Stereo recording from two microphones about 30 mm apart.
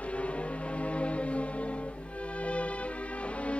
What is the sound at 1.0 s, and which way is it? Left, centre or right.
Music, left.